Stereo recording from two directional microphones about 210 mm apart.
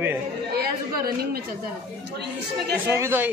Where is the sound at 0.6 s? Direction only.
45° right (ahead or behind).